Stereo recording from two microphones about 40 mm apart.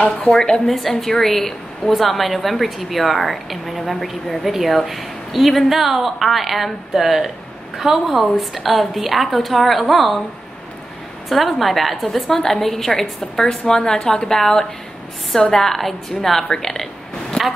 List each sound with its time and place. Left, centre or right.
0.0 s a woman's voice: left
0.7 s a woman's voice: centre
11.2 s a woman's voice: centre